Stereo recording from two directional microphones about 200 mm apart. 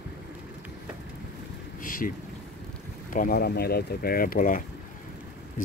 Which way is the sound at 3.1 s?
45° left (ahead or behind).